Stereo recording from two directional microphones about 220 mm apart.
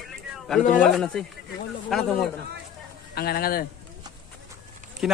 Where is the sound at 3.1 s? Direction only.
45° left (ahead or behind).